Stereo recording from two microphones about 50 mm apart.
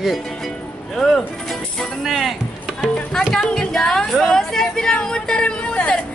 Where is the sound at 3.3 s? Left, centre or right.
Centre.